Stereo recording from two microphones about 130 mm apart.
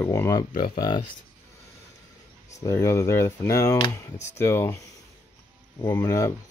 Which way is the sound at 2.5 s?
20° left (ahead or behind).